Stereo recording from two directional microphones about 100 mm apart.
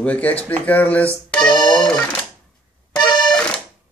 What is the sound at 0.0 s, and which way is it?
Speech, 15° left (ahead or behind).